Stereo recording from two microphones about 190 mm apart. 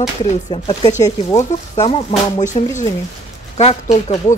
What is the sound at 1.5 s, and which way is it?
Speech, 35° left (ahead or behind).